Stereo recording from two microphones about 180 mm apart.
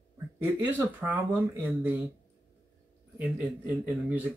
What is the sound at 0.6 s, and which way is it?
Speech, 10° right (ahead or behind).